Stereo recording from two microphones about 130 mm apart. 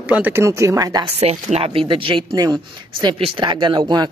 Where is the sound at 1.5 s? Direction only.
45° right (ahead or behind).